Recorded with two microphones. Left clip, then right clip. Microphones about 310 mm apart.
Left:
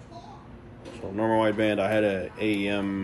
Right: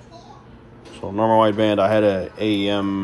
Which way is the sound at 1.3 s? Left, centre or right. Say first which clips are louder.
Right 7 dB; right.